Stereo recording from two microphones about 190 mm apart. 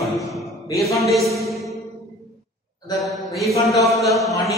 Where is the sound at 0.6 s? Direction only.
15° left (ahead or behind).